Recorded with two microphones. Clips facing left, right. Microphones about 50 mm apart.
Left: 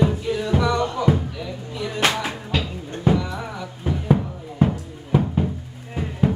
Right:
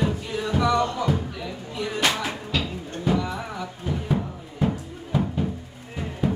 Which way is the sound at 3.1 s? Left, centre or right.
Left.